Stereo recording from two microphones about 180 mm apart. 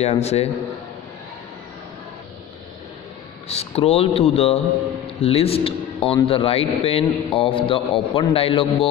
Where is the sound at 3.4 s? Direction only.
35° left (ahead or behind).